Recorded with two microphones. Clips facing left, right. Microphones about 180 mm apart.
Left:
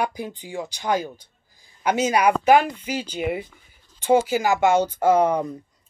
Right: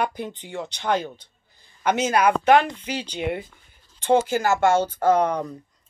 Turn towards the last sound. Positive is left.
turn(degrees=10)  # may be behind; listen again after turning